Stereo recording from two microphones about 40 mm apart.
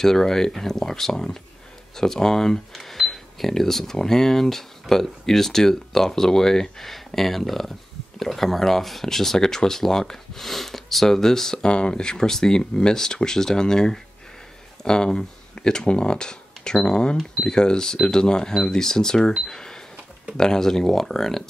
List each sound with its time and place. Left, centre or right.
0.0 s speech: centre